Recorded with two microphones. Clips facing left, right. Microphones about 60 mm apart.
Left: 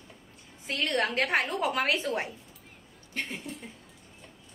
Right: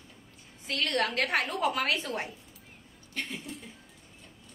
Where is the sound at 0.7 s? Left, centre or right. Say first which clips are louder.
Left 1 dB; left.